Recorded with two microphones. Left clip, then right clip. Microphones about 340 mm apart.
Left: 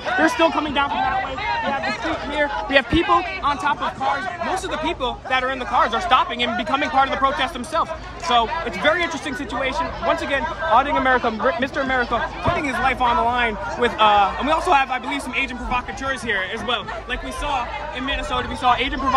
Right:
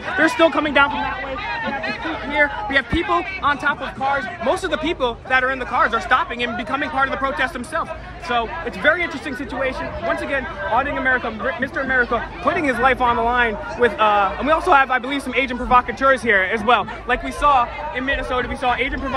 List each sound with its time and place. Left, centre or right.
0.2 s speech: centre
0.9 s speech: left
2.3 s speech: centre